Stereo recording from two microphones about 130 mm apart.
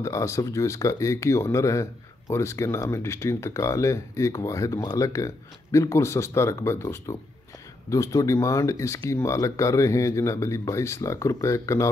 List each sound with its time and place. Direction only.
0.0 s speech: 25° left (ahead or behind)